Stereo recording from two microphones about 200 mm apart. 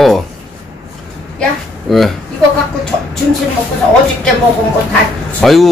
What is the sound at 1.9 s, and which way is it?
Speech, centre (ahead or behind).